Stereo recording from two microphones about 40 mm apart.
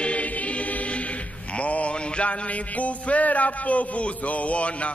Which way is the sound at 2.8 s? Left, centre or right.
Left.